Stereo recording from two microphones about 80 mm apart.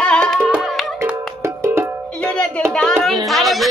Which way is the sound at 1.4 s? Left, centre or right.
Right.